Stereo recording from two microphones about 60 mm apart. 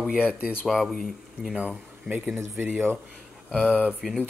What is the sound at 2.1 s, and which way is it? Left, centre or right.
Speech, centre.